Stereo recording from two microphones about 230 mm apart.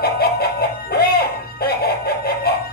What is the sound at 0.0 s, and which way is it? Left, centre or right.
Music, left.